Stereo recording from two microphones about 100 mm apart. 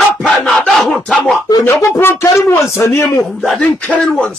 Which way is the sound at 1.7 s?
30° left (ahead or behind).